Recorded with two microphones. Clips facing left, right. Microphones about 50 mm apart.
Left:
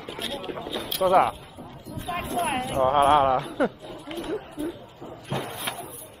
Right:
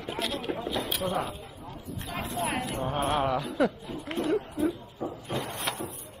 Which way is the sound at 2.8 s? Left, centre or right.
Left.